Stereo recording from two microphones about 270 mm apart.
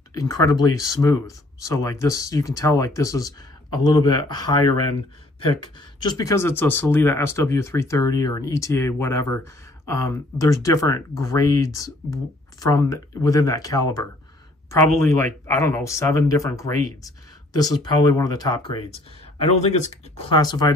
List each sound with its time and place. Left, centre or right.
0.1 s speech: centre